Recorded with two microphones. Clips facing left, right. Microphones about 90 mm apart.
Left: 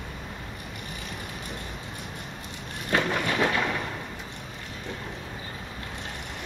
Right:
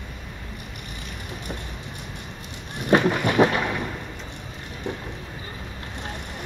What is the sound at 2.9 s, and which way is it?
Thunder, 20° right (ahead or behind).